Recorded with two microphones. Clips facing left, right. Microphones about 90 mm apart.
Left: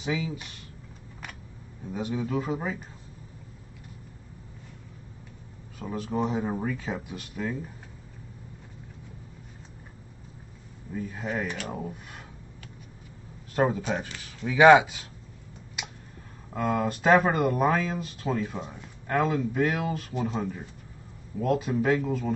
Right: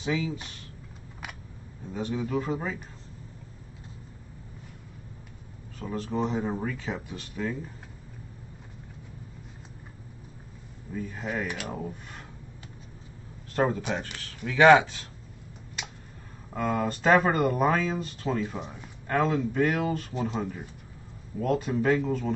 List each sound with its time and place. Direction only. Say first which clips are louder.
0.0 s speech: right 1 dB; 5° left (ahead or behind)
1.9 s speech: even; 5° left (ahead or behind)
5.8 s speech: left 1 dB; 10° left (ahead or behind)
10.9 s speech: left 1 dB; 5° left (ahead or behind)
13.6 s speech: left 1 dB; 5° left (ahead or behind)
16.5 s speech: left 1 dB; centre (ahead or behind)